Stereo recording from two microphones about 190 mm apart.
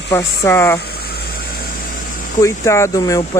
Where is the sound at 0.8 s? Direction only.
55° left (ahead or behind).